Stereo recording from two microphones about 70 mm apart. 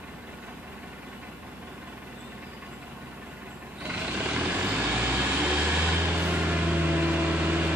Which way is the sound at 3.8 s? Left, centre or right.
Right.